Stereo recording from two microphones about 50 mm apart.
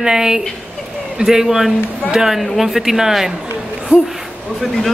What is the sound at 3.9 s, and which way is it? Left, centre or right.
Speech, left.